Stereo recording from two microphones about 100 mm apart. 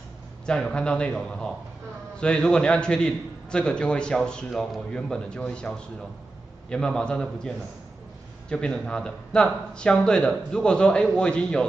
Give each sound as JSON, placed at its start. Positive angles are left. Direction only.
{"t": 0.5, "sound": "a man's voice", "side_deg": 10}